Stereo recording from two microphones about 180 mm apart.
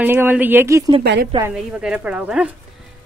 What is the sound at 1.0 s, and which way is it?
Speech, 70° right (ahead or behind).